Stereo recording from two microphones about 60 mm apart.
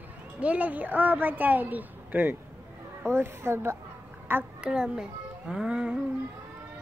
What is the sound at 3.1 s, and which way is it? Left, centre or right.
Speech, right.